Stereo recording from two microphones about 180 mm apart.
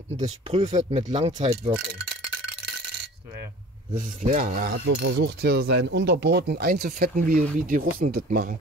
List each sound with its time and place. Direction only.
0.5 s speech: 35° right (ahead or behind)
3.9 s speech: 40° right (ahead or behind)